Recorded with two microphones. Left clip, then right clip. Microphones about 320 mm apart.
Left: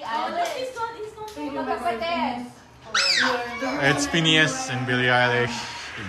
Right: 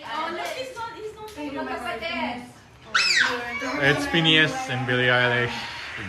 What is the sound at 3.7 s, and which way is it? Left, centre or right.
Speech, centre.